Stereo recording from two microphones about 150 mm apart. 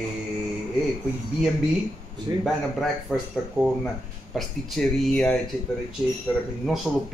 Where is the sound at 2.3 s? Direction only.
25° right (ahead or behind).